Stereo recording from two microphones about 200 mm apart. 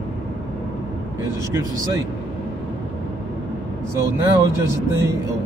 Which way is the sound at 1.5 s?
15° right (ahead or behind).